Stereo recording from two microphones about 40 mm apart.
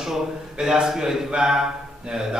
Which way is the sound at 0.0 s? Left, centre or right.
Centre.